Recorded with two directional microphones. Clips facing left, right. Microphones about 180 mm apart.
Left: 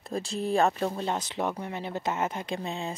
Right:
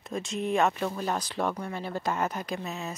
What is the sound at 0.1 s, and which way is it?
A woman's voice, 35° left (ahead or behind).